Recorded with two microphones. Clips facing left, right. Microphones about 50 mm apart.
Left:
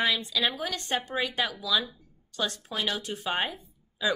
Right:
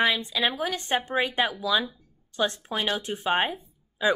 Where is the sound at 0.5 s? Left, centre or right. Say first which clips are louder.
Right 4 dB; centre.